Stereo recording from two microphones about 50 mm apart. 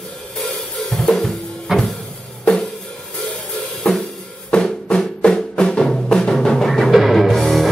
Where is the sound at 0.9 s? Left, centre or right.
Centre.